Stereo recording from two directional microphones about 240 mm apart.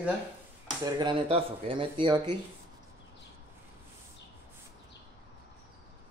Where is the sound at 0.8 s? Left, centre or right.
Centre.